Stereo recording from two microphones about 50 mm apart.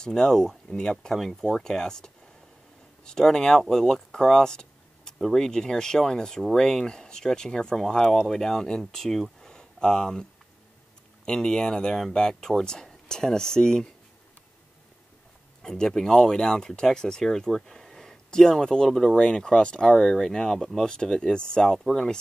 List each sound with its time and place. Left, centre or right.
0.0 s speech: centre
9.4 s a sound: centre
11.2 s speech: centre
15.6 s speech: centre